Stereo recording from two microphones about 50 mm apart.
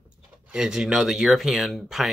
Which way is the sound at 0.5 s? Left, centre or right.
Centre.